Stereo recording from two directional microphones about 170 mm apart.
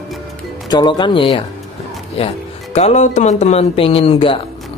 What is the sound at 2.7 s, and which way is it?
A woman's voice, 40° left (ahead or behind).